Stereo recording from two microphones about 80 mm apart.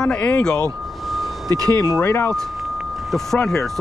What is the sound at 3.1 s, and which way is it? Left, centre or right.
Speech, centre.